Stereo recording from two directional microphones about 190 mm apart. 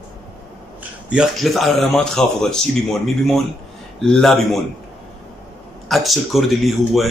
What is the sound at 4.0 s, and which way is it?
Speech, centre (ahead or behind).